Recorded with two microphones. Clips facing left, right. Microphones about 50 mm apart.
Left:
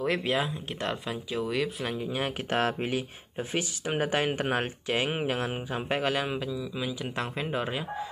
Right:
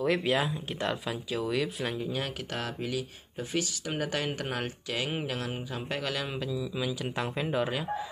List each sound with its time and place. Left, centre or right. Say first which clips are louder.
0.0 s speech: right 1 dB; centre
2.0 s speech: left 2 dB; left
2.5 s speech: left 7 dB; left
6.3 s speech: left 1 dB; centre